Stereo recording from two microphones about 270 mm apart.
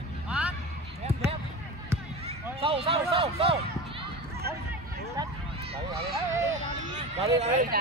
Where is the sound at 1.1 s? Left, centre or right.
Right.